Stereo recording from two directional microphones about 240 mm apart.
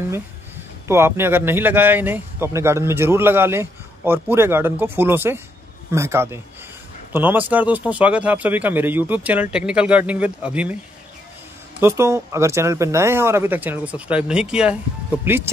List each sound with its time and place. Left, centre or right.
0.8 s a man's voice: centre
11.8 s a man's voice: centre